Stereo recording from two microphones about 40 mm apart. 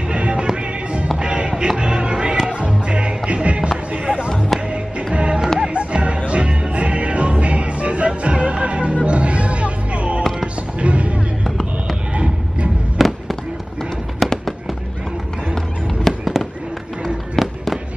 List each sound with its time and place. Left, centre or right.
0.1 s music: right
3.9 s a sound: right
4.6 s music: right
12.1 s a sound: right
12.9 s fireworks: centre
15.5 s fireworks: centre
17.0 s music: centre